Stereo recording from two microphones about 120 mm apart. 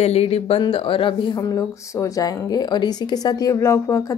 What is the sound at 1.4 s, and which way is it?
A woman's voice, 25° left (ahead or behind).